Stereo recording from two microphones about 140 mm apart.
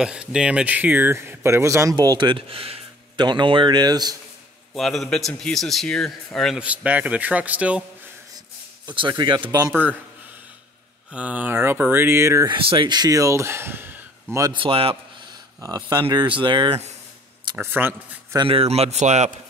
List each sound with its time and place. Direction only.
0.0 s speech: 5° right (ahead or behind); by 4.2 s 30° right (ahead or behind)
4.7 s a man's voice: centre (ahead or behind)
6.6 s speech: 10° right (ahead or behind)
8.8 s speech: 35° right (ahead or behind)
9.7 s speech: 15° right (ahead or behind)
11.1 s speech: 10° right (ahead or behind)
12.4 s speech: 40° right (ahead or behind); by 14.5 s 20° right (ahead or behind)
14.5 s speech: 40° right (ahead or behind)
15.6 s speech: 25° right (ahead or behind)
16.3 s speech: 35° right (ahead or behind)
17.6 s speech: 15° right (ahead or behind)
18.5 s speech: 45° right (ahead or behind)